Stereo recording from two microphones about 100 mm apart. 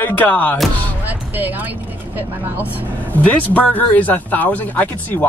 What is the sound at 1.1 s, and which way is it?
Music, 20° right (ahead or behind).